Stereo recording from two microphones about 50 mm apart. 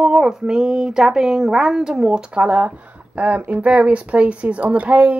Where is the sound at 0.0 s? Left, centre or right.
Centre.